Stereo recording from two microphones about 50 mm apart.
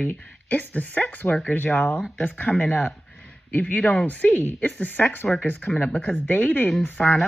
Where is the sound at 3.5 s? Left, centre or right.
Left.